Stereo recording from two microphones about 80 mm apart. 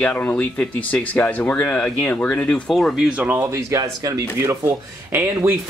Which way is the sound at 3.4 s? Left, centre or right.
Right.